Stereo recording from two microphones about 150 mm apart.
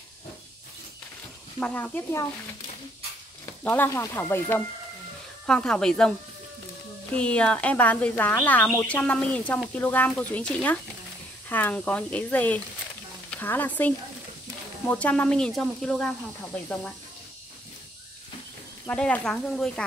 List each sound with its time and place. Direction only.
1.6 s speech: 10° left (ahead or behind)
3.6 s speech: 15° left (ahead or behind)
5.5 s speech: 5° left (ahead or behind)
18.9 s speech: 10° left (ahead or behind)